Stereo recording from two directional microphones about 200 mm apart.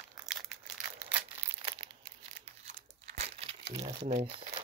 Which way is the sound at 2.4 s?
35° right (ahead or behind).